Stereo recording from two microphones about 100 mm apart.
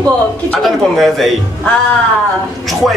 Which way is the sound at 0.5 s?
Centre (ahead or behind).